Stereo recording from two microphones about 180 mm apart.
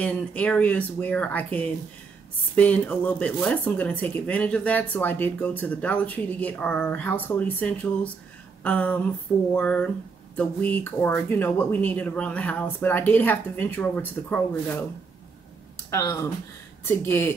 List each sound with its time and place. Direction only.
0.0 s speech: 5° left (ahead or behind)
15.9 s speech: 15° left (ahead or behind)